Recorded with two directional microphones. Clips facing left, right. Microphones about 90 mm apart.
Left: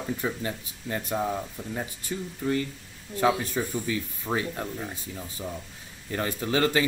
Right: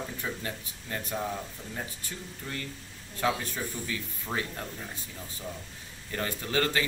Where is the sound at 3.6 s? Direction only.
25° left (ahead or behind).